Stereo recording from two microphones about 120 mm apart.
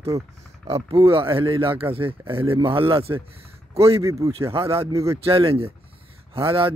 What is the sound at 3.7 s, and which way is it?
Speech, 25° right (ahead or behind).